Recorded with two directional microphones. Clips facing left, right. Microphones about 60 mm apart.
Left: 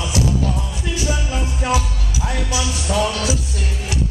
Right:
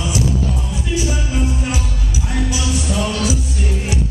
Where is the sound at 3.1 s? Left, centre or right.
Right.